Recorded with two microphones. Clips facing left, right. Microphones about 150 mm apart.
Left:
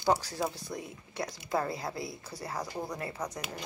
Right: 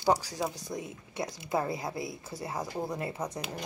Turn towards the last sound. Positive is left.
turn(degrees=-25)  # may be behind; listen again after turning